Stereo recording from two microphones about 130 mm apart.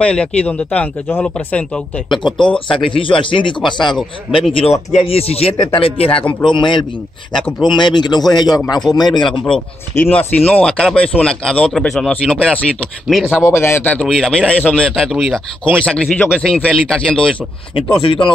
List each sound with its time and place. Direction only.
0.0 s speech: 10° left (ahead or behind)
2.9 s speech: 40° left (ahead or behind)
9.9 s speech: 10° left (ahead or behind)
13.1 s speech: 5° right (ahead or behind)
13.4 s a man's voice: 20° left (ahead or behind)
13.9 s speech: 5° left (ahead or behind)
17.7 s speech: 45° left (ahead or behind)